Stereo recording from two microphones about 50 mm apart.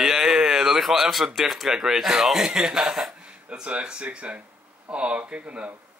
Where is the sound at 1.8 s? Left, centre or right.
Centre; by 5.7 s right.